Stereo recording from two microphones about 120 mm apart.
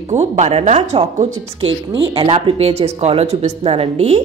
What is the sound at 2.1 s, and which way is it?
A woman's voice, 50° right (ahead or behind).